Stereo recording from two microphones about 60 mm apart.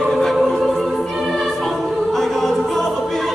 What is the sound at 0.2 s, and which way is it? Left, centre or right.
Choir, centre.